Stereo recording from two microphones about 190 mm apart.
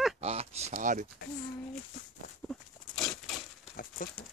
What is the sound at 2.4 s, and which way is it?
Dog, centre (ahead or behind).